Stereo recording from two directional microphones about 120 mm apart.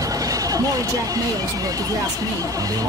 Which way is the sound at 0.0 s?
30° right (ahead or behind).